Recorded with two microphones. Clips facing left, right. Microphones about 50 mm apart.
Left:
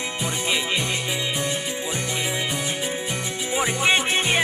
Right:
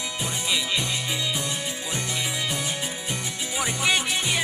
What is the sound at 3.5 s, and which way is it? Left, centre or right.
Music, left.